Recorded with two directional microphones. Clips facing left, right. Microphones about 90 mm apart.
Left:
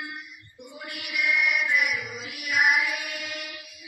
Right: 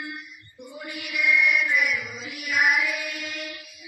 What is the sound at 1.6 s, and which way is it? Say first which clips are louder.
Mantra: right 1 dB; 10° left (ahead or behind).